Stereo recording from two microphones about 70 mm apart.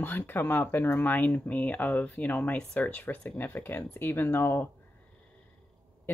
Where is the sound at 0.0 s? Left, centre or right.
Left.